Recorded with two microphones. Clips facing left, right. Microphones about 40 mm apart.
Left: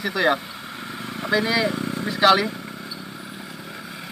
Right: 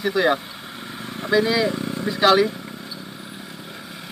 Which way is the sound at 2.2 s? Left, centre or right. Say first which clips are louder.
Right 1 dB; centre.